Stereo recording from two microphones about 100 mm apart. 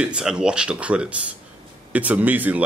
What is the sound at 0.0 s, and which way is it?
Speech, 10° right (ahead or behind).